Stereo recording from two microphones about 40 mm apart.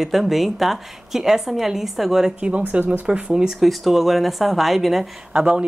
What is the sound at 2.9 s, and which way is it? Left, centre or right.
Speech, right.